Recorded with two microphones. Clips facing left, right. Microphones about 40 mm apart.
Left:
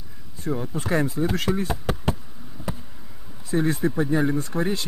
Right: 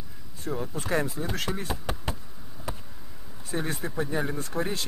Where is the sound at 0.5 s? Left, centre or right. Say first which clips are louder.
Left 4 dB; centre.